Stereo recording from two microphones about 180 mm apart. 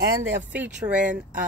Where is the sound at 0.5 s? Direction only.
5° right (ahead or behind).